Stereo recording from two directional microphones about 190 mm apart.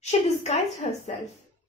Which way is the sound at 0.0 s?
35° left (ahead or behind).